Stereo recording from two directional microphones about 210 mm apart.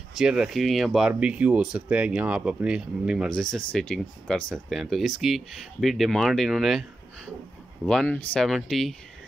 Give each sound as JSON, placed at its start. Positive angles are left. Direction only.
{"t": 0.2, "sound": "speech", "side_deg": -5}